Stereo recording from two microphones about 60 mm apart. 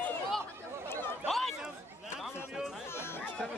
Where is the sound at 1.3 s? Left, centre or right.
Centre.